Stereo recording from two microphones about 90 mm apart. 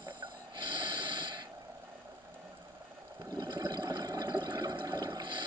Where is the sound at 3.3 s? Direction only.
50° right (ahead or behind).